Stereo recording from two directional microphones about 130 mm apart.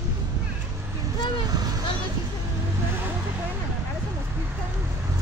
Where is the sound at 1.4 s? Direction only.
30° right (ahead or behind).